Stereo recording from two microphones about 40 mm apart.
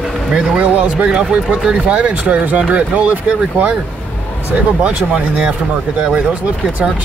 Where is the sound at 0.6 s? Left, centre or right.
Right.